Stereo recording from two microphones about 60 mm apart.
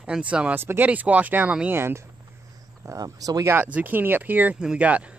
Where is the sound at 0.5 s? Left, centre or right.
Right.